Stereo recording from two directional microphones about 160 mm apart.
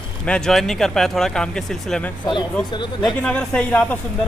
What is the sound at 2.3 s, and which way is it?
Speech, 30° left (ahead or behind).